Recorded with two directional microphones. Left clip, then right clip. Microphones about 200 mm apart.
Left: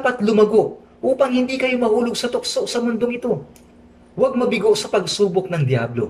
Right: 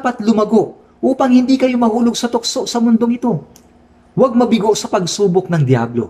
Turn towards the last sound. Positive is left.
turn(degrees=-40)  # may be behind; listen again after turning